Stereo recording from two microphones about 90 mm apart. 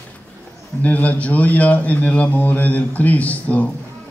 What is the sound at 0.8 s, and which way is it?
A man's voice, 15° left (ahead or behind).